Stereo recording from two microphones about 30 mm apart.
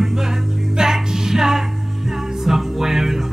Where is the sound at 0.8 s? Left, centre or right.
Centre.